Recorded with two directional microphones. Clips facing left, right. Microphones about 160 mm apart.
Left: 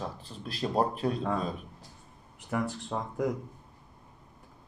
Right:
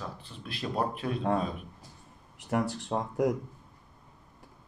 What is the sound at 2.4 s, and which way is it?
Speech, 55° right (ahead or behind).